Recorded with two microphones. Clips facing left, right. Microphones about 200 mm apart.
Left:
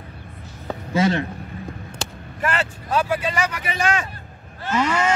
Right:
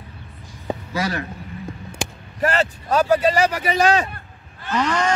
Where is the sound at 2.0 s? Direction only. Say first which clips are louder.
Right 4 dB; 15° right (ahead or behind).